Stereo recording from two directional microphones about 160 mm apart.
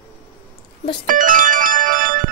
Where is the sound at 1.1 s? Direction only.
55° right (ahead or behind).